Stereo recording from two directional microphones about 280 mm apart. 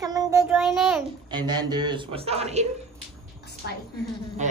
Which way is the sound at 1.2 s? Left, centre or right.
Centre.